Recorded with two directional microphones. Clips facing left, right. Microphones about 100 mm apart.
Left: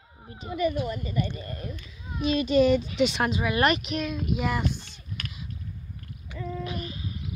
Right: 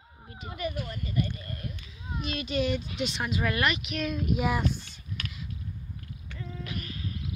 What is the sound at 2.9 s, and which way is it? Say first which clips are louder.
Speech: left 8 dB; 70° left (ahead or behind).